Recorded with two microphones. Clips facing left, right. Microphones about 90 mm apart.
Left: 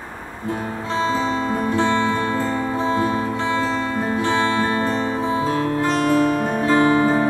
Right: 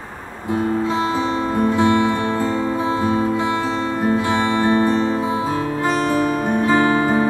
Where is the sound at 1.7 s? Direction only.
15° right (ahead or behind).